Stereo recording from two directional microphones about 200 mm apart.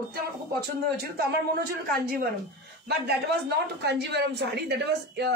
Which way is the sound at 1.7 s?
50° right (ahead or behind).